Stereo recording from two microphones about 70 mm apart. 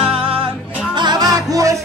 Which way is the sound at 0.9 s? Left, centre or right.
Right.